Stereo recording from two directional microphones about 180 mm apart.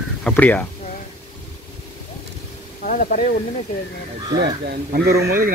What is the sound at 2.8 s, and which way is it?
Speech, 50° left (ahead or behind).